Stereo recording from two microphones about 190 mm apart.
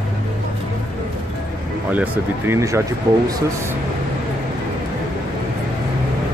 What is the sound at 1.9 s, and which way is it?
Speech, 10° right (ahead or behind).